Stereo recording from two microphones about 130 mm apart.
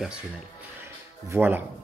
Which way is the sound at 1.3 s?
15° right (ahead or behind).